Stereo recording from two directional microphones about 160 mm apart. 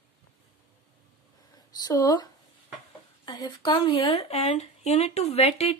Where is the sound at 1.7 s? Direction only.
25° left (ahead or behind).